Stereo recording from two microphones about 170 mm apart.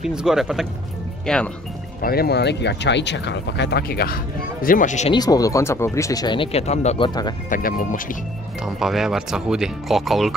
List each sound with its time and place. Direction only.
0.0 s speech: 5° right (ahead or behind)
2.0 s speech: 65° left (ahead or behind); by 5.1 s 45° left (ahead or behind)
5.1 s speech: 20° left (ahead or behind); by 7.1 s 40° left (ahead or behind)
7.4 s speech: 50° left (ahead or behind)
8.6 s speech: centre (ahead or behind)